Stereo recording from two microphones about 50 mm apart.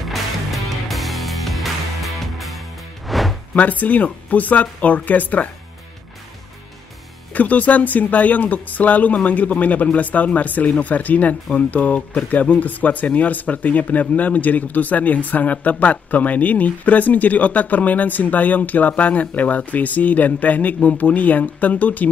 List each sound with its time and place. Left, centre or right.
0.1 s music: centre
3.5 s speech: left
7.3 s speech: left